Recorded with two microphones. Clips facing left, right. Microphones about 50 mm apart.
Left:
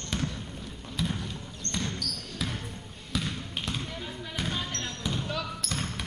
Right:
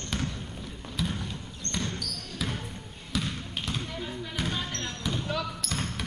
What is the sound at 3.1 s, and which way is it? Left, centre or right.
Basketball bounce, centre.